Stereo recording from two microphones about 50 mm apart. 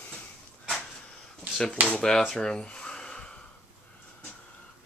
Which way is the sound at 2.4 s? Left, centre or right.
Centre.